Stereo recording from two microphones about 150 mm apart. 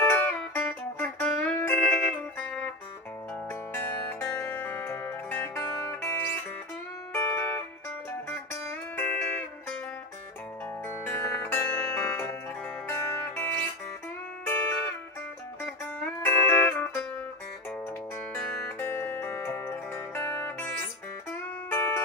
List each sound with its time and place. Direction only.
0.0 s music: 10° left (ahead or behind)
3.7 s music: 15° left (ahead or behind)
10.9 s music: 15° left (ahead or behind)
15.6 s music: 10° left (ahead or behind)
18.8 s music: 15° left (ahead or behind)